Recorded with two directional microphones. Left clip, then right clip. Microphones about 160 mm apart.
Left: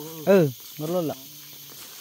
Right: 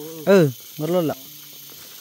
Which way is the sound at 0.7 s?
55° right (ahead or behind).